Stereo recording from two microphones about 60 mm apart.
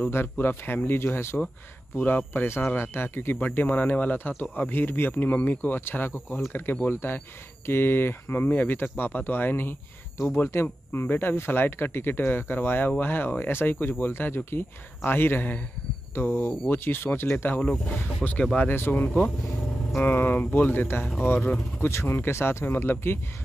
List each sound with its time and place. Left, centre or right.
0.0 s speech: left
3.3 s speech: left
17.6 s speech: centre; by 23.1 s left